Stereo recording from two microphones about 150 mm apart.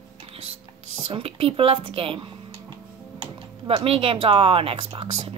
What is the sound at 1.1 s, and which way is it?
A woman's voice, 40° right (ahead or behind).